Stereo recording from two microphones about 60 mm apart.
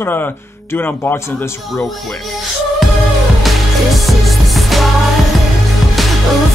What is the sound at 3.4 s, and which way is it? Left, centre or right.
Music, centre.